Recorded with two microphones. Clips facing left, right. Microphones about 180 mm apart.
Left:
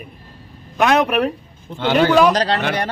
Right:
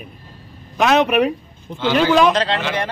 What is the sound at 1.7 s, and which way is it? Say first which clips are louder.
Speech: left 1 dB; 55° left (ahead or behind).